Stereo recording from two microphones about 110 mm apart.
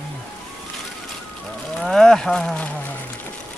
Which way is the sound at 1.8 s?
5° left (ahead or behind).